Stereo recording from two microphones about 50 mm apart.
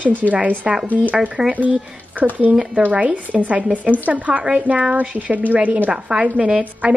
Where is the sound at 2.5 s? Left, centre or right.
Centre.